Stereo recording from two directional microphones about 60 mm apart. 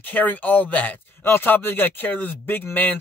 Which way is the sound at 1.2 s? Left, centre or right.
Left.